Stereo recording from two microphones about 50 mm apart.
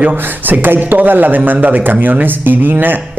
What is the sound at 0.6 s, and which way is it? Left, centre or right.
A man's voice, right.